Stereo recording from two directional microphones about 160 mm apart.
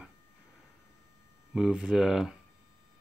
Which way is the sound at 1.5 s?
5° right (ahead or behind).